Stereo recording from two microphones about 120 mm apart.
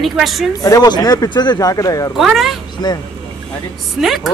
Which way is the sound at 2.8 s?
35° left (ahead or behind).